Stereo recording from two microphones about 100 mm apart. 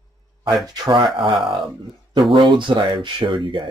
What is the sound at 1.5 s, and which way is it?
Speech, centre (ahead or behind).